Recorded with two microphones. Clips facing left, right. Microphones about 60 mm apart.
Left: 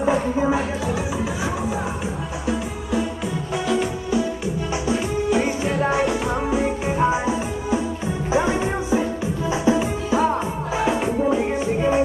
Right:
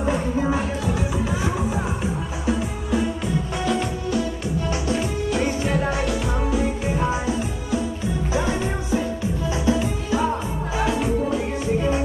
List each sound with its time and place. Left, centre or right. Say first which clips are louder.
0.0 s music: left 3 dB; centre
2.4 s music: right 1 dB; centre